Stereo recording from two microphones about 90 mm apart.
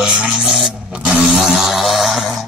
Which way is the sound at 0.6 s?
5° right (ahead or behind).